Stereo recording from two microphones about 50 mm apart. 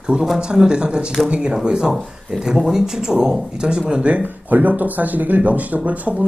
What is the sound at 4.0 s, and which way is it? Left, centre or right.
Speech, right.